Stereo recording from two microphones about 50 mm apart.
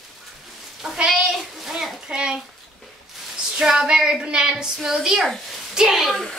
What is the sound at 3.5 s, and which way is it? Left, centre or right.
A woman's voice, centre.